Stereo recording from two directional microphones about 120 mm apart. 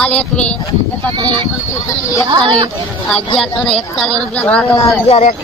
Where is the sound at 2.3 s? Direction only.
40° right (ahead or behind).